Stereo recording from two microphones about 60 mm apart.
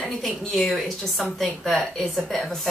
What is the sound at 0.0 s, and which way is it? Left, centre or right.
Speech, centre.